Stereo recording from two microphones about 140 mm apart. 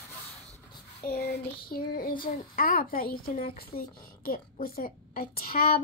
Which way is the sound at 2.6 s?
90° left.